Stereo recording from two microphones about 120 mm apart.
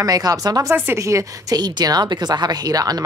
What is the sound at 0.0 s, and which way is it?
Speech, 30° right (ahead or behind).